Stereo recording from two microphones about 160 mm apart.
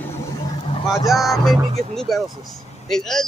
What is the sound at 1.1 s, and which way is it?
Speech, centre (ahead or behind).